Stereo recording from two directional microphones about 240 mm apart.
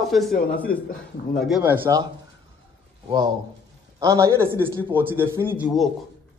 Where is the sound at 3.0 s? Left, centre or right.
Centre.